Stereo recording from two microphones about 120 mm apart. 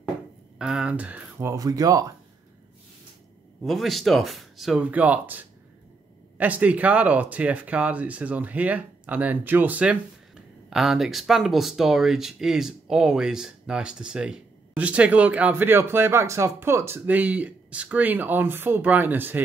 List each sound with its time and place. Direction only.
0.6 s speech: 5° right (ahead or behind)
1.4 s speech: 30° right (ahead or behind)
3.6 s speech: centre (ahead or behind)
4.9 s speech: 15° right (ahead or behind)